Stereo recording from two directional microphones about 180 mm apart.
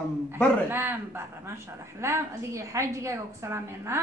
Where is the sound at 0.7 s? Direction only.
10° right (ahead or behind).